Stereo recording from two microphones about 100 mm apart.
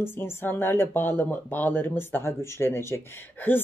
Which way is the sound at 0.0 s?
25° left (ahead or behind).